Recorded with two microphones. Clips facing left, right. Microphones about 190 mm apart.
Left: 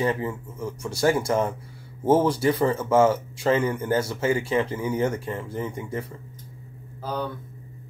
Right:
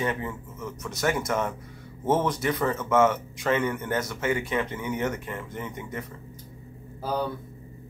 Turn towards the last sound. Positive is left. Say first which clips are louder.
# right 1 dB
turn(degrees=-10)  # may be behind; listen again after turning